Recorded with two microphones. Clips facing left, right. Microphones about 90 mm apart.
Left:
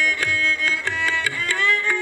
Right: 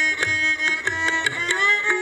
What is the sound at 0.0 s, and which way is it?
Music, 20° right (ahead or behind).